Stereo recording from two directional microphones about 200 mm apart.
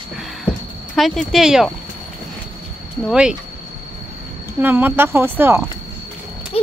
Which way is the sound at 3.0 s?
5° right (ahead or behind).